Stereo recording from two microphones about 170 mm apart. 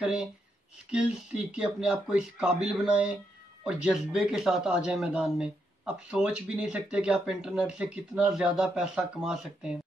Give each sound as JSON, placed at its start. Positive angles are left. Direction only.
{"t": 0.0, "sound": "speech", "side_deg": -5}